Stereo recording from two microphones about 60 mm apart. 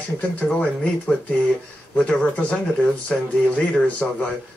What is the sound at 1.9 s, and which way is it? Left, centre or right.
Speech, centre.